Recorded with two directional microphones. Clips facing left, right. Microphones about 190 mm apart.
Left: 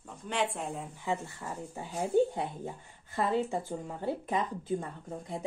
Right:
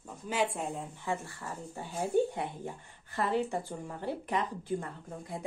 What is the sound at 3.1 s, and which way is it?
Speech, 20° left (ahead or behind).